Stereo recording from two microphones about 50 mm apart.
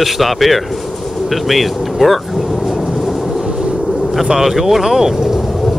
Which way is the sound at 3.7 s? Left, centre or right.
Centre.